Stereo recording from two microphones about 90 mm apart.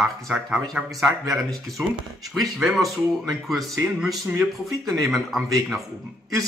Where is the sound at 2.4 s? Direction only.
5° right (ahead or behind).